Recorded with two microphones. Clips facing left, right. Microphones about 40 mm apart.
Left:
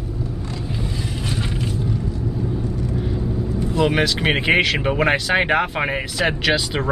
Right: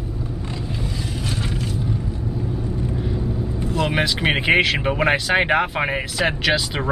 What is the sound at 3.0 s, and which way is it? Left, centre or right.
Vehicle, centre.